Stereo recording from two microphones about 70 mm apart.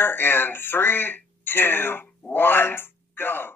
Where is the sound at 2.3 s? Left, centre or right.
Left.